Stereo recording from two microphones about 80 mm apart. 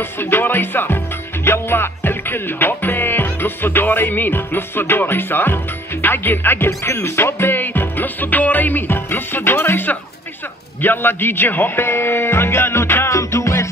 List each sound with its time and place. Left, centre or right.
0.2 s music: left
10.8 s speech: left